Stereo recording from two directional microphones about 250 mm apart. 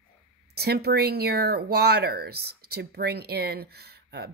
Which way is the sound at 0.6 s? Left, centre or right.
Right.